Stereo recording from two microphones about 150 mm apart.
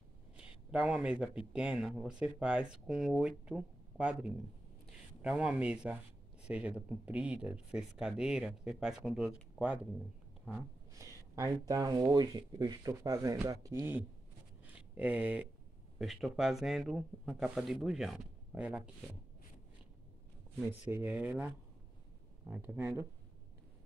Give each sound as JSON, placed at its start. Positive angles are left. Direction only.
{"t": 0.4, "sound": "speech", "side_deg": -5}
{"t": 10.9, "sound": "speech", "side_deg": -20}
{"t": 14.6, "sound": "a sound", "side_deg": -10}
{"t": 16.0, "sound": "speech", "side_deg": 0}
{"t": 20.5, "sound": "speech", "side_deg": -10}
{"t": 22.5, "sound": "speech", "side_deg": -15}